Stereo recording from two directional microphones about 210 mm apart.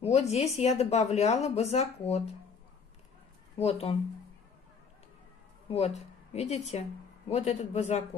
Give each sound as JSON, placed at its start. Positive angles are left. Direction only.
{"t": 0.0, "sound": "a woman's voice", "side_deg": 30}
{"t": 3.5, "sound": "speech", "side_deg": 30}
{"t": 5.7, "sound": "speech", "side_deg": 30}